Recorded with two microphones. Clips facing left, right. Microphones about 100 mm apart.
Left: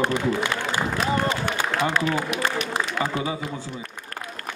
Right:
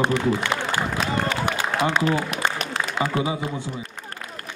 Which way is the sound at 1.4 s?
15° right (ahead or behind).